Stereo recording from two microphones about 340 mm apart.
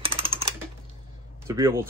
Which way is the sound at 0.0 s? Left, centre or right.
Centre.